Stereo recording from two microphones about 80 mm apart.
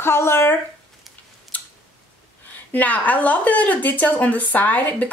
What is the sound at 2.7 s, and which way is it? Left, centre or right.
A woman's voice, centre.